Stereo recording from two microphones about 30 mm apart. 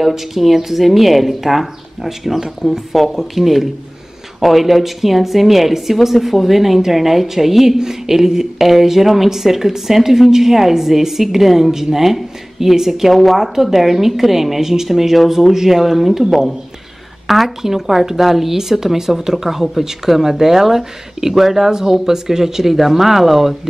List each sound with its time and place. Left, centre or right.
0.0 s speech: centre
2.9 s a woman's voice: centre
13.1 s a woman's voice: centre
13.4 s speech: centre
17.6 s speech: centre